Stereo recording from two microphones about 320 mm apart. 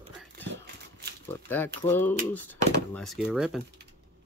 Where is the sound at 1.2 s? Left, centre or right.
Centre.